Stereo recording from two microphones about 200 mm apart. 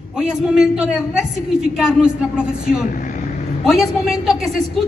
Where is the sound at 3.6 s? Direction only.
Centre (ahead or behind).